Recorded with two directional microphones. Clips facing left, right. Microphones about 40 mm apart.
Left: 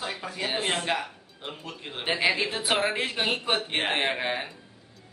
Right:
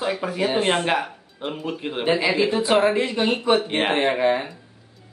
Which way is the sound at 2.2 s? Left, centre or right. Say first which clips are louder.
Right 5 dB; centre.